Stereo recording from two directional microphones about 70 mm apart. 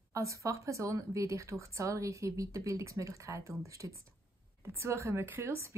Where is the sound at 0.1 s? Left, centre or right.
Right.